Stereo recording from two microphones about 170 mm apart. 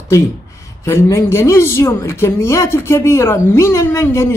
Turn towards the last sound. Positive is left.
turn(degrees=15)  # may be behind; listen again after turning